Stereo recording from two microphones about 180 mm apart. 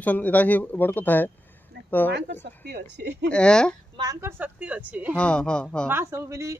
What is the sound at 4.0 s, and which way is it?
A woman's voice, 15° right (ahead or behind).